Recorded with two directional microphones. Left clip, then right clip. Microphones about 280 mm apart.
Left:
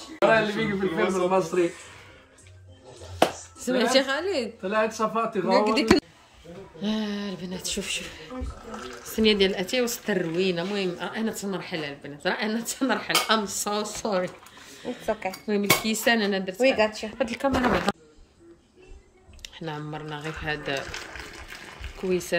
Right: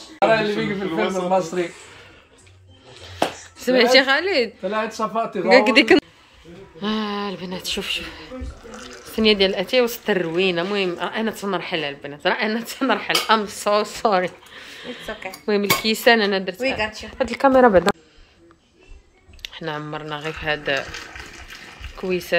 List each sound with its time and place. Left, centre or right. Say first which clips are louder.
0.9 s speech: right 4 dB; right
3.1 s a sound: even; centre
4.6 s speech: right 1 dB; right
5.6 s a woman's voice: right 5 dB; centre
16.5 s speech: left 2 dB; left
17.2 s a woman's voice: right 8 dB; centre
19.4 s a woman's voice: right 7 dB; centre
22.0 s a woman's voice: right 3 dB; centre